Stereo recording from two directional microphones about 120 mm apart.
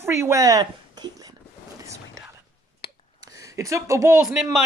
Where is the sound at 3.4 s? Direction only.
25° right (ahead or behind).